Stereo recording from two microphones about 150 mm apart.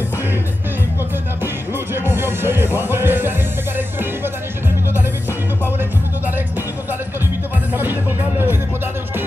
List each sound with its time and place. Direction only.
2.0 s music: 15° right (ahead or behind)
5.8 s music: 10° right (ahead or behind)
7.7 s music: 15° right (ahead or behind)